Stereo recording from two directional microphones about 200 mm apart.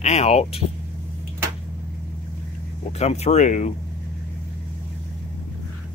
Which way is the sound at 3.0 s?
35° left (ahead or behind).